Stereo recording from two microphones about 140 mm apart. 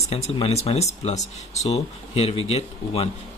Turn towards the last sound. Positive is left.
turn(degrees=50)  # may be behind; listen again after turning